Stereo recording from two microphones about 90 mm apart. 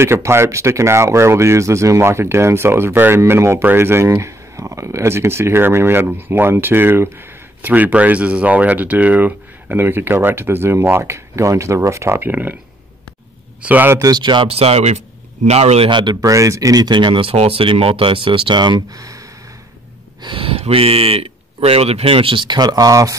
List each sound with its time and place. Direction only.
0.0 s speech: 30° right (ahead or behind)
13.6 s a man's voice: 20° right (ahead or behind)
13.9 s speech: 40° right (ahead or behind)
14.2 s speech: 65° right (ahead or behind); by 16.0 s 90° right
16.2 s speech: 40° right (ahead or behind); by 18.8 s 60° right (ahead or behind)
18.9 s speech: 40° right (ahead or behind)
20.2 s speech: 75° right (ahead or behind); by 23.1 s 40° right (ahead or behind)